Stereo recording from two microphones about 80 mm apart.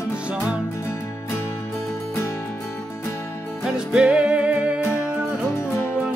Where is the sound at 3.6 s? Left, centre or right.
Centre.